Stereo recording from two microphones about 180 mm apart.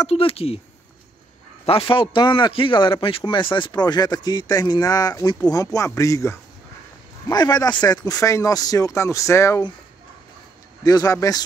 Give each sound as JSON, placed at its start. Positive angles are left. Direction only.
{"t": 0.1, "sound": "speech", "side_deg": 30}
{"t": 1.7, "sound": "speech", "side_deg": 30}
{"t": 10.8, "sound": "speech", "side_deg": 20}